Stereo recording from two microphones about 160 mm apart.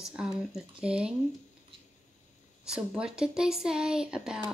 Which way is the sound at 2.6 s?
5° right (ahead or behind).